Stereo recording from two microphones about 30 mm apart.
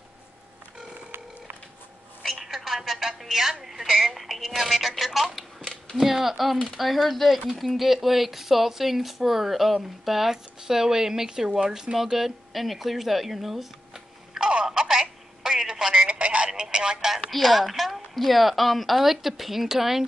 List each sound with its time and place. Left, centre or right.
2.3 s telephone: centre
3.3 s a woman's voice: centre
3.6 s a sound: centre
4.1 s speech: centre
5.6 s a sound: centre
5.9 s speech: centre
14.4 s telephone: right
16.1 s telephone: right
16.4 s speech: right
17.3 s speech: centre